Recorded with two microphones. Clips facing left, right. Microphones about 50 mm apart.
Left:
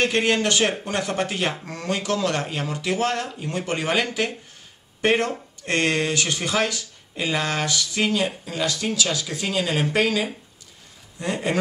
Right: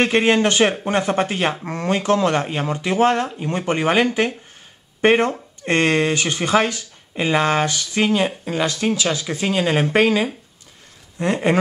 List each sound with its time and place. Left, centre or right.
0.0 s speech: right
11.3 s speech: right